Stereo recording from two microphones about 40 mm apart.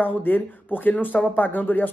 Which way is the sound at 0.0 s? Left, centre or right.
Left.